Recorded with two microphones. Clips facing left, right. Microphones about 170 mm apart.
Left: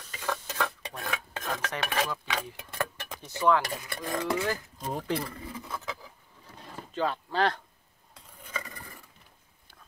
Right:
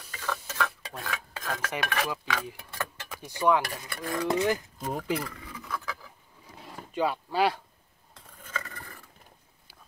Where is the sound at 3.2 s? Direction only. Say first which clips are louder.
Even; 15° right (ahead or behind).